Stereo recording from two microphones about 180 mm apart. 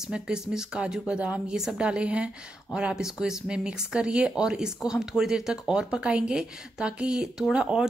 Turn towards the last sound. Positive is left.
turn(degrees=-5)  # may be behind; listen again after turning